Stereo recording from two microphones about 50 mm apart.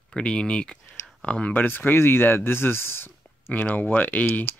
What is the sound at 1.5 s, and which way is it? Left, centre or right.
Speech, left.